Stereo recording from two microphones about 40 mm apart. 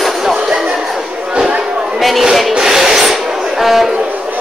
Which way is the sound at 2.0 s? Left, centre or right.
Centre.